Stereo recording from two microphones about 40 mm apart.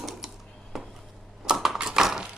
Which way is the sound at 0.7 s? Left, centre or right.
Centre.